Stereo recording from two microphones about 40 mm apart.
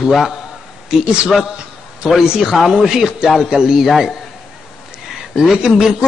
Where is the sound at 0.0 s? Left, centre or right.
Centre.